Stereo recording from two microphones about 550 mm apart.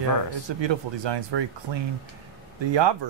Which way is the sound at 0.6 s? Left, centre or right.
Right.